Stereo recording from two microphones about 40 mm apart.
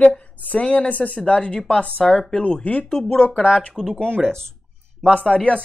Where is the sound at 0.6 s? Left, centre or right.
Left.